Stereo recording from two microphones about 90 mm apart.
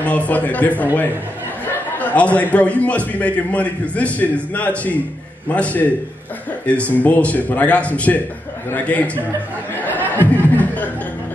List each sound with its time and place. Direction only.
0.0 s a man's voice: 15° left (ahead or behind)
2.0 s a sound: 15° left (ahead or behind)
2.5 s a man's voice: 15° left (ahead or behind)
10.1 s beatboxing: 20° left (ahead or behind)